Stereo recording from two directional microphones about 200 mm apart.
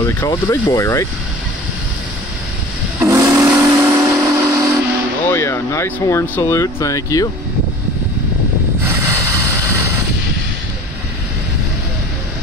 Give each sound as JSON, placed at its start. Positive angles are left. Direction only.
{"t": 0.2, "sound": "speech", "side_deg": 15}
{"t": 3.0, "sound": "steam whistle", "side_deg": -10}
{"t": 5.3, "sound": "speech", "side_deg": 15}
{"t": 9.0, "sound": "vehicle", "side_deg": -15}